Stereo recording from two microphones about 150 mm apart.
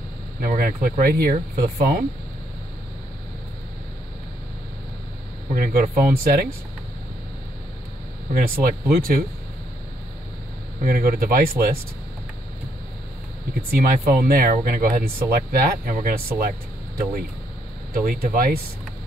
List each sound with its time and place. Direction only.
0.4 s speech: 70° right (ahead or behind)
5.5 s speech: 75° right (ahead or behind)
8.6 s speech: 75° right (ahead or behind)
10.8 s speech: 75° right (ahead or behind)
13.6 s speech: 75° right (ahead or behind)
16.3 s vehicle: 70° right (ahead or behind)
17.9 s speech: 70° right (ahead or behind)